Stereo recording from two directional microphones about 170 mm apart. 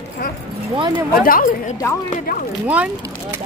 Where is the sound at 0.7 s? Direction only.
30° right (ahead or behind).